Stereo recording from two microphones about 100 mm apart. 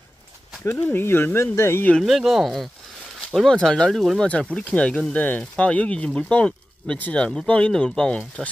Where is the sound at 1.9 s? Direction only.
Centre (ahead or behind).